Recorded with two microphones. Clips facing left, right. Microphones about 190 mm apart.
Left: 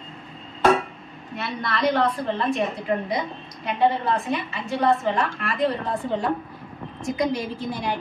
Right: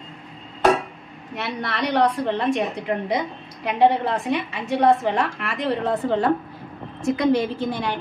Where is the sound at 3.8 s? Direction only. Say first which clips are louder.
Right 3 dB; 75° right (ahead or behind).